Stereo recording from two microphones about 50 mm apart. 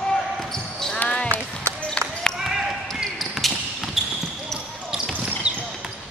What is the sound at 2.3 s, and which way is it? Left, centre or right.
Basketball bounce, centre.